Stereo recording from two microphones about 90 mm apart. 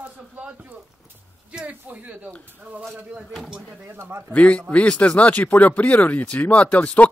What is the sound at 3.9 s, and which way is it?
Speech, 25° right (ahead or behind).